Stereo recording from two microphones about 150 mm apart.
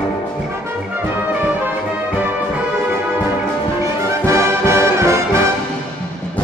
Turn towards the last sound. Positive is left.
turn(degrees=-20)  # may be behind; listen again after turning